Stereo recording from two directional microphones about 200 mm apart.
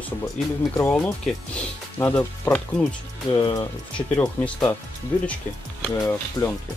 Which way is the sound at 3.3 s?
20° left (ahead or behind).